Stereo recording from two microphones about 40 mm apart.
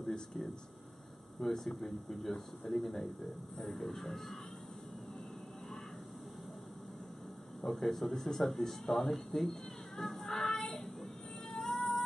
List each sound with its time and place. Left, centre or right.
1.4 s speech: centre
7.6 s speech: centre
10.2 s child singing: centre
11.5 s music: centre